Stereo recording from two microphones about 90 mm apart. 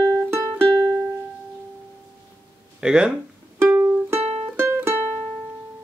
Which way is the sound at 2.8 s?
10° right (ahead or behind).